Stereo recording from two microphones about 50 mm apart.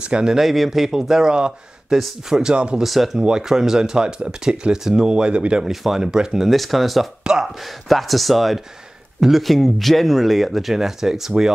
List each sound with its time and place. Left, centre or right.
0.0 s speech: centre
0.4 s speech: centre
2.5 s speech: right
2.8 s speech: centre
5.7 s speech: centre
6.5 s speech: centre